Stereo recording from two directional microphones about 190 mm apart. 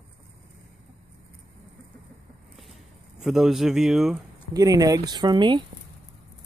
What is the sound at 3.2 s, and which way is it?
Speech, centre (ahead or behind).